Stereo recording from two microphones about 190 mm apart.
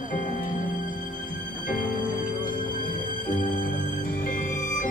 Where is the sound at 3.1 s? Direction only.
45° left (ahead or behind).